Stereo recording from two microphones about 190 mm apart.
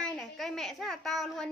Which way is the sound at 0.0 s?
Centre (ahead or behind).